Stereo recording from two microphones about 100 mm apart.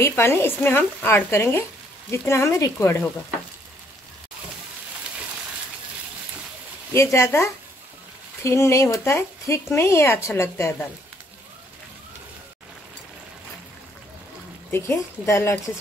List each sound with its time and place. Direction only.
0.0 s speech: 25° left (ahead or behind)
6.9 s speech: 30° left (ahead or behind)
14.7 s speech: 30° left (ahead or behind)